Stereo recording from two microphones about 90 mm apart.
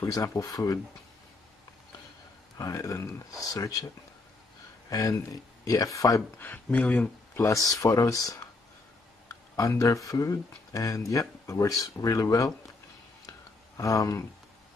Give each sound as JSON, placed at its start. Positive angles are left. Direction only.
{"t": 0.1, "sound": "speech", "side_deg": 40}
{"t": 2.5, "sound": "speech", "side_deg": 40}
{"t": 4.8, "sound": "speech", "side_deg": 40}
{"t": 6.4, "sound": "speech", "side_deg": 20}
{"t": 7.3, "sound": "speech", "side_deg": 35}
{"t": 13.7, "sound": "speech", "side_deg": 40}